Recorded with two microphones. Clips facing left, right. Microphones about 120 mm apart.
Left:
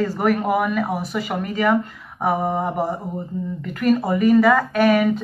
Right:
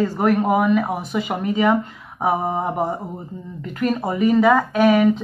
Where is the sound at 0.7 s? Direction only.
Centre (ahead or behind).